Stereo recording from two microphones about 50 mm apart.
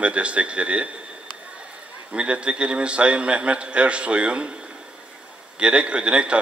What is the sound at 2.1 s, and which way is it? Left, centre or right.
A man's voice, right.